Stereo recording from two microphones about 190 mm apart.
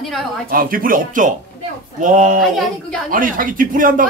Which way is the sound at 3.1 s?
45° right (ahead or behind).